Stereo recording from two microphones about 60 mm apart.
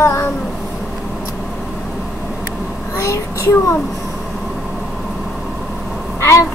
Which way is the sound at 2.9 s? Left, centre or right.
Left.